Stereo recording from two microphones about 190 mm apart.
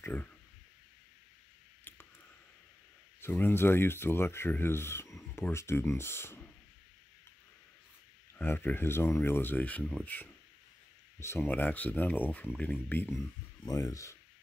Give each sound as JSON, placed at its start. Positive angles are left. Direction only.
{"t": 0.0, "sound": "speech", "side_deg": 10}
{"t": 1.9, "sound": "clicking", "side_deg": 10}
{"t": 3.2, "sound": "speech", "side_deg": 10}
{"t": 8.4, "sound": "speech", "side_deg": 10}